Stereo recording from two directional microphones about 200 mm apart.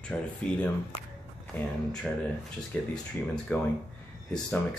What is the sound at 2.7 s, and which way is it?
Speech, 5° left (ahead or behind).